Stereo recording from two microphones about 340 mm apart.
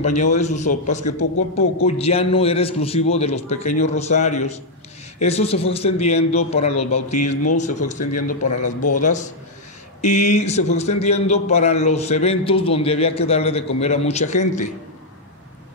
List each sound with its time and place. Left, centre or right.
0.0 s a man's voice: centre